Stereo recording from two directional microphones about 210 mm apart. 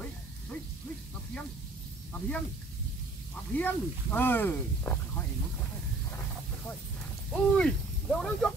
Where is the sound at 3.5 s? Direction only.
10° left (ahead or behind).